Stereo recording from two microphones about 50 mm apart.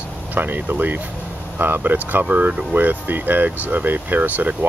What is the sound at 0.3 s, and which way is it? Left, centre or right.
Speech, right.